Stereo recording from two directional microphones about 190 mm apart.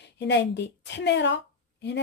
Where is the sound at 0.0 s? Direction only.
65° left (ahead or behind).